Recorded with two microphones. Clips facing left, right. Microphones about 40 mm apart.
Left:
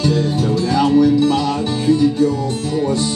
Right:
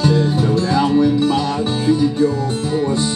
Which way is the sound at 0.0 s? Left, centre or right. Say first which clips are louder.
Right 1 dB; right.